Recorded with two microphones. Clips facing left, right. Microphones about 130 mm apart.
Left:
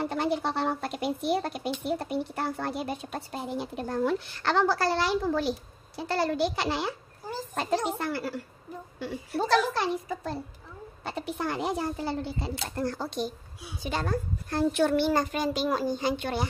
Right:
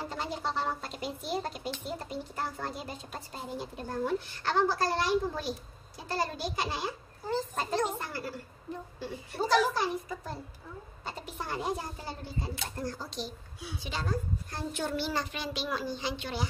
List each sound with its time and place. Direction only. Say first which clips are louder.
0.0 s a woman's voice: left 7 dB; 65° left (ahead or behind)
9.5 s a woman's voice: left 1 dB; 75° left (ahead or behind); by 16.4 s 55° left (ahead or behind)